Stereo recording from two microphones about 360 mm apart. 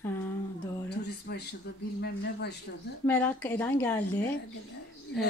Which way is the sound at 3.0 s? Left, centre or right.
Centre.